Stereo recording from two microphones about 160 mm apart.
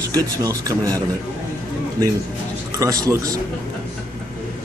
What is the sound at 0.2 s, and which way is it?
Speech, 20° right (ahead or behind).